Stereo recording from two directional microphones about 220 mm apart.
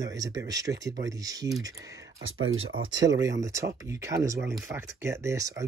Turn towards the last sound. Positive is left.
turn(degrees=-15)  # may be behind; listen again after turning